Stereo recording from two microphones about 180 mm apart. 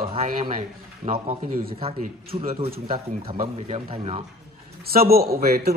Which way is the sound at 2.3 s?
30° right (ahead or behind).